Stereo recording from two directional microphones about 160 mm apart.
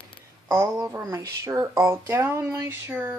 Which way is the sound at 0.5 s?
25° right (ahead or behind).